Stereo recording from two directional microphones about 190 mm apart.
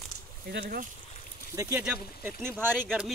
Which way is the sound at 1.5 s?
15° right (ahead or behind).